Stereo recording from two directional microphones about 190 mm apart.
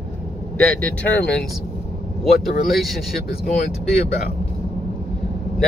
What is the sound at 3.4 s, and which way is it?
Speech, 35° left (ahead or behind).